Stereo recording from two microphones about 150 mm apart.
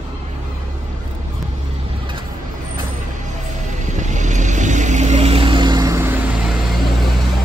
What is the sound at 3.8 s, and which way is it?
Vehicle, 55° right (ahead or behind).